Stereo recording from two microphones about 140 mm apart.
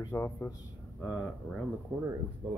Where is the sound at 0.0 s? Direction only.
20° left (ahead or behind).